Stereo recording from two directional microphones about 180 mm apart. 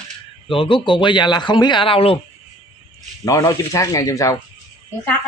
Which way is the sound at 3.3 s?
20° left (ahead or behind).